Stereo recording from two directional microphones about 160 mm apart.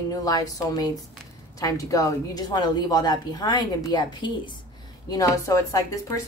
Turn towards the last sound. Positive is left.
turn(degrees=20)  # may be behind; listen again after turning